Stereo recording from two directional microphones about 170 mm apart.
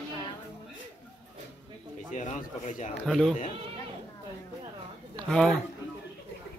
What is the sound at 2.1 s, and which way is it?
Speech, 45° left (ahead or behind).